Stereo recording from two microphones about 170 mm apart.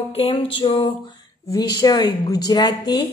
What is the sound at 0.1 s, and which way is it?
A woman's voice, 35° left (ahead or behind).